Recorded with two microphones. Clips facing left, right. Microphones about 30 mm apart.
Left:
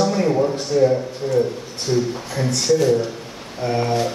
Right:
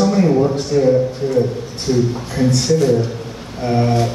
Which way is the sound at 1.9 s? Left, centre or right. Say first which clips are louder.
Right 3 dB; centre.